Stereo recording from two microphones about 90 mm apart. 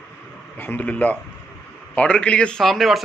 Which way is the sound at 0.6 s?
20° left (ahead or behind).